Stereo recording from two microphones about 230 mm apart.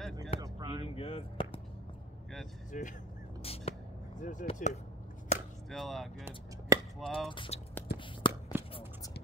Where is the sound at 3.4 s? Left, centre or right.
Left.